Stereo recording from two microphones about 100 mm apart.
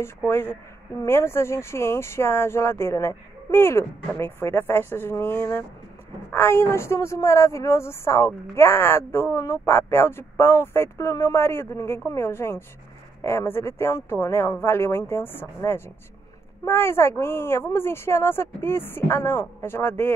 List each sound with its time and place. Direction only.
0.3 s speech: 20° left (ahead or behind)